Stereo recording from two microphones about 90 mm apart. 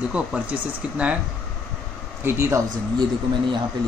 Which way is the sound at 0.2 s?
15° right (ahead or behind).